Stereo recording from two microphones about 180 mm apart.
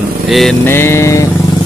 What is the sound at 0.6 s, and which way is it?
Music, 15° left (ahead or behind).